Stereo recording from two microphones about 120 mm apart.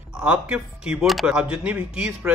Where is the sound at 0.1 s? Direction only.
5° right (ahead or behind).